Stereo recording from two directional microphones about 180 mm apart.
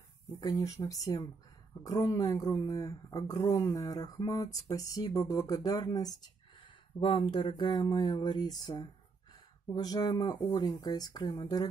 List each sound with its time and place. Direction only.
0.3 s speech: 20° left (ahead or behind)